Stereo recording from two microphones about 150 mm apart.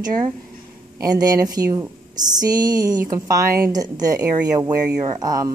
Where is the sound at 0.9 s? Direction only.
25° right (ahead or behind).